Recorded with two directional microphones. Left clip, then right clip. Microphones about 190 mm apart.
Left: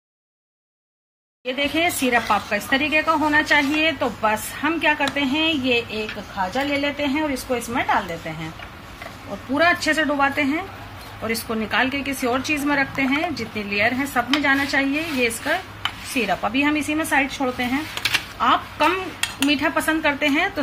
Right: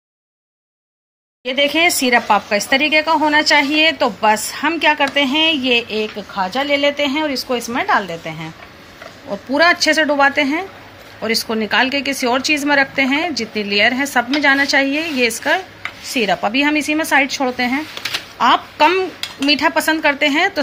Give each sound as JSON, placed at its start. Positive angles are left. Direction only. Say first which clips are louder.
{"t": 1.4, "sound": "speech", "louder": "right 7 dB", "side_deg": -45}
{"t": 9.6, "sound": "speech", "louder": "right 5 dB", "side_deg": -45}